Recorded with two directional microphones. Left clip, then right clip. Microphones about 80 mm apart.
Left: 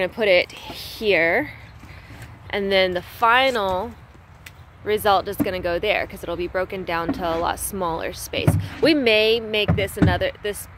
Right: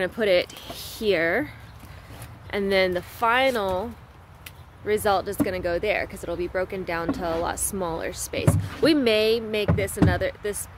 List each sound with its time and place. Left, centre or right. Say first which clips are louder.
0.0 s speech: left 4 dB; right
2.5 s speech: left 3 dB; right
3.2 s speech: left 4 dB; centre
9.8 s speech: left 3 dB; centre